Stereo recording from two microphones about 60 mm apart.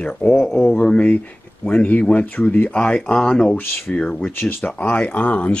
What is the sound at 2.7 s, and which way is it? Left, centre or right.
Speech, centre.